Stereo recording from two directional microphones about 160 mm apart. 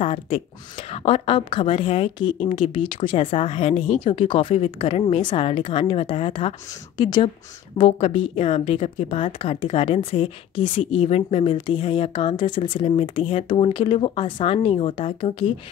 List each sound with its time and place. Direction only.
0.0 s a woman's voice: 35° left (ahead or behind)